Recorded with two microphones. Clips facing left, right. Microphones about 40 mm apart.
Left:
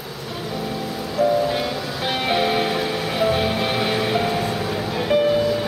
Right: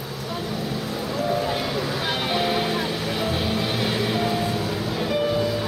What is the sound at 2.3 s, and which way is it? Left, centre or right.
Music, centre.